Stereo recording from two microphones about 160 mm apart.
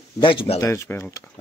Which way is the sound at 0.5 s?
15° left (ahead or behind).